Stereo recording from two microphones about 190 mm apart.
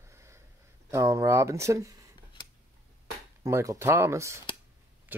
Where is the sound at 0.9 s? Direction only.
15° right (ahead or behind).